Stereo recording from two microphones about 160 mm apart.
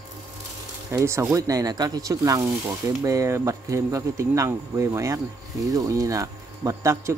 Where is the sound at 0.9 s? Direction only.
20° right (ahead or behind).